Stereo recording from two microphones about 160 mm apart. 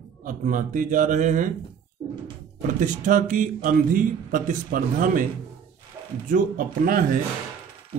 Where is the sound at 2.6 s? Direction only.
55° right (ahead or behind).